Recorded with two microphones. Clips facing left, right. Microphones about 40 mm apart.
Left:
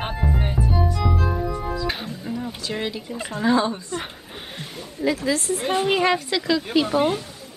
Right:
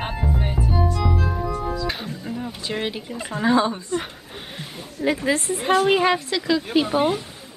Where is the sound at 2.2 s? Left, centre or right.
Centre.